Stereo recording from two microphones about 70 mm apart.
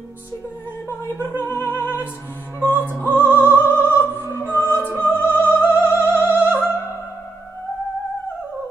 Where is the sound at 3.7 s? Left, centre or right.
Right.